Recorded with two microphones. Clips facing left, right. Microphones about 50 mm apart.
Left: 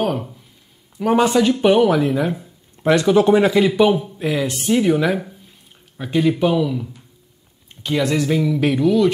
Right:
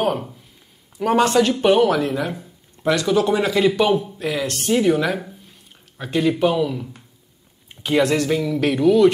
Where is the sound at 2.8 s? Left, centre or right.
Left.